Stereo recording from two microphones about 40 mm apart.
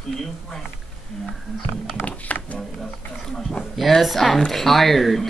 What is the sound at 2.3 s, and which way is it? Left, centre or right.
Speech, left.